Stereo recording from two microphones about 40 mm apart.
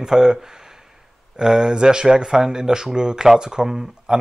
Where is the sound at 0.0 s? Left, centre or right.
Centre.